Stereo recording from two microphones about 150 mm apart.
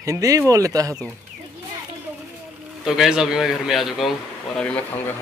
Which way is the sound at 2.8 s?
5° right (ahead or behind).